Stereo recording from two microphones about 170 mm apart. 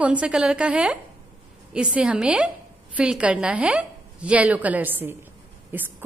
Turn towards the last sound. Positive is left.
turn(degrees=-10)  # may be behind; listen again after turning